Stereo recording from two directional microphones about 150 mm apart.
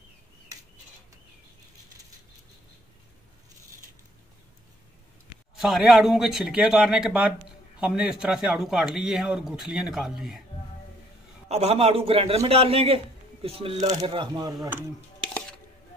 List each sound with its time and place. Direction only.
5.6 s speech: centre (ahead or behind)
11.4 s a man's voice: 45° right (ahead or behind)
13.7 s speech: 25° right (ahead or behind)